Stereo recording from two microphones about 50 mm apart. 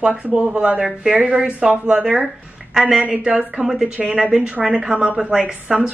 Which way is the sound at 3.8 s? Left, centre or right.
Right.